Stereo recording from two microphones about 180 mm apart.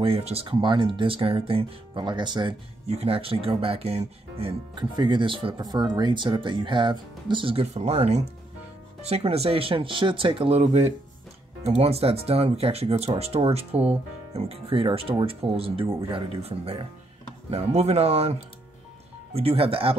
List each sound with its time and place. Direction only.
0.0 s speech: 30° right (ahead or behind)